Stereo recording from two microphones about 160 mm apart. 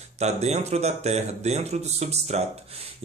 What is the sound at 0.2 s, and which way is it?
Speech, 45° right (ahead or behind).